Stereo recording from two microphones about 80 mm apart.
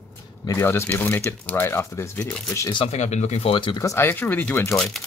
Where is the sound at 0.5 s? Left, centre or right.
Left.